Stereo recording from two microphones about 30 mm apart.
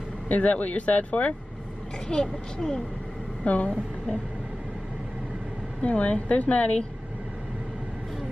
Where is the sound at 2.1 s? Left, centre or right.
Left.